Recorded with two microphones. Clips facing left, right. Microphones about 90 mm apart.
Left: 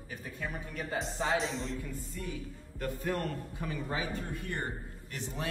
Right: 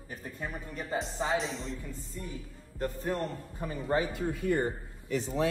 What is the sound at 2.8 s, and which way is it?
Speech, 20° right (ahead or behind).